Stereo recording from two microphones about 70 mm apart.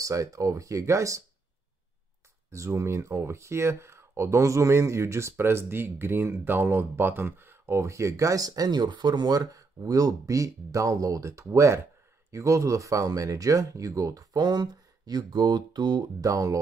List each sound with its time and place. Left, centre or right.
0.0 s speech: right
2.5 s speech: right
16.3 s speech: right